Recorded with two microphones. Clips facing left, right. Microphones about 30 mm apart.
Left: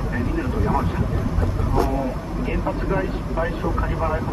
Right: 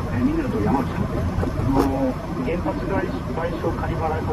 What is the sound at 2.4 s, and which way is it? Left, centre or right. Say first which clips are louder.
Speech: even; centre.